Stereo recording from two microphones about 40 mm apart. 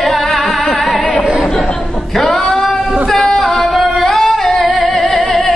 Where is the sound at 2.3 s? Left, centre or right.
Centre.